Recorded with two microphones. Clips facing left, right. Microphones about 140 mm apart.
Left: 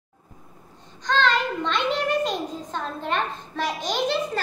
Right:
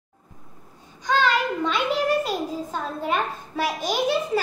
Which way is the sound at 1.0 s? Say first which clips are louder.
Right 1 dB; 10° right (ahead or behind).